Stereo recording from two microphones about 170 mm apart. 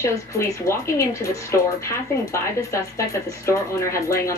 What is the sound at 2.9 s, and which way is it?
Speech, 15° left (ahead or behind).